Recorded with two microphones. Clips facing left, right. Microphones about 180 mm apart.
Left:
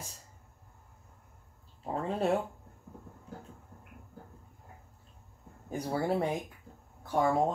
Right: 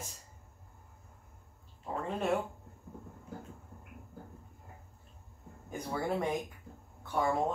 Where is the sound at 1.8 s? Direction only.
35° left (ahead or behind).